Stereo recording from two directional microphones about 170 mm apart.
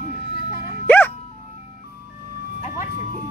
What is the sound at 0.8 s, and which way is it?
Music, 10° left (ahead or behind).